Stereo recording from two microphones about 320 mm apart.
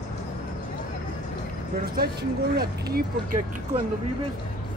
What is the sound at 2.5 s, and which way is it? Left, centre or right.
Speech, right.